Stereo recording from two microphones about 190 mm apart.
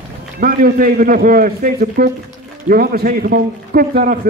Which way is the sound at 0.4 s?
50° right (ahead or behind).